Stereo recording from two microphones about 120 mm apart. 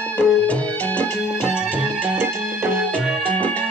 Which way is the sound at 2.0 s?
15° right (ahead or behind).